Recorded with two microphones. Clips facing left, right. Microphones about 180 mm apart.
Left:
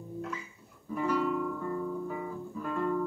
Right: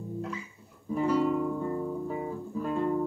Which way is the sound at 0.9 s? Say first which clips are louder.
Right 4 dB; 30° right (ahead or behind).